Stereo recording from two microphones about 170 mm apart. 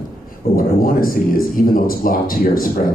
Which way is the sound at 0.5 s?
55° left (ahead or behind).